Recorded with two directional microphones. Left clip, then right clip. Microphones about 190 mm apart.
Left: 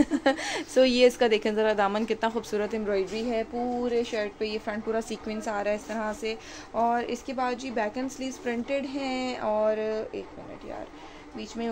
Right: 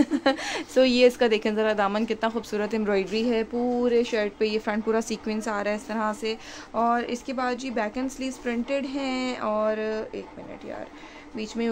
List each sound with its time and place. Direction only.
0.0 s speech: 10° right (ahead or behind)
2.8 s speech: 40° right (ahead or behind); by 10.2 s 20° right (ahead or behind)
11.3 s speech: 35° right (ahead or behind)